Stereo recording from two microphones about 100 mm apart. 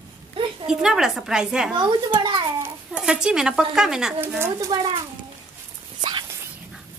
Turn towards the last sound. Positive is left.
turn(degrees=-50)  # may be behind; listen again after turning